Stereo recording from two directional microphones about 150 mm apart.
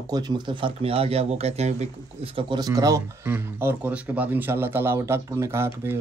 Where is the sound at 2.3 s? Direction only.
30° right (ahead or behind).